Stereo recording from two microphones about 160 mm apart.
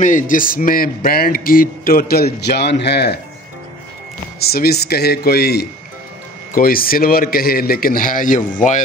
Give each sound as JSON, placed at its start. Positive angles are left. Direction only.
{"t": 0.0, "sound": "a man's voice", "side_deg": 55}
{"t": 4.4, "sound": "speech", "side_deg": 75}
{"t": 6.5, "sound": "a man's voice", "side_deg": 65}